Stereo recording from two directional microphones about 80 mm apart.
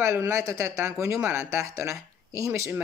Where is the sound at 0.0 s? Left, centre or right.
Right.